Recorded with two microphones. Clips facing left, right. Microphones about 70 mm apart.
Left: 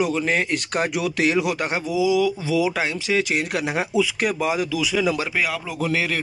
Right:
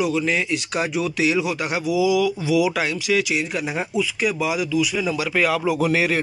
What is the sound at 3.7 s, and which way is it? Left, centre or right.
Speech, left.